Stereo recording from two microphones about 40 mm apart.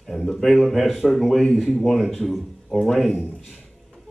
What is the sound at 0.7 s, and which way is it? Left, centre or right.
Speech, centre.